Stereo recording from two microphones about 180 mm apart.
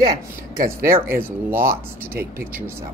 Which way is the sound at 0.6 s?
55° right (ahead or behind).